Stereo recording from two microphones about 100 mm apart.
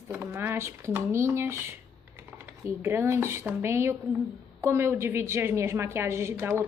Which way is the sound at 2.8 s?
25° right (ahead or behind).